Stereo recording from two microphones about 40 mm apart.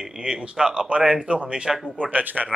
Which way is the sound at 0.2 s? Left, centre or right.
Right.